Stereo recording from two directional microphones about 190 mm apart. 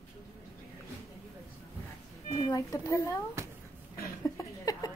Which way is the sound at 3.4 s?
15° right (ahead or behind).